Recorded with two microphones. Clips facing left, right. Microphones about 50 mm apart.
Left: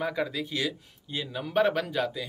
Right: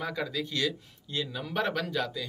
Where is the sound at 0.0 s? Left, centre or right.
Centre.